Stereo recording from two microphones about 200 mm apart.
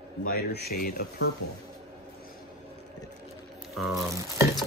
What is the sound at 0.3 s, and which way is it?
Speech, 50° left (ahead or behind).